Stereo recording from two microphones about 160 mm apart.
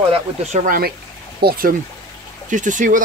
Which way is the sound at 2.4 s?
50° right (ahead or behind).